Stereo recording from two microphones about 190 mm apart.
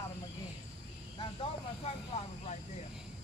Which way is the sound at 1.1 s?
30° left (ahead or behind).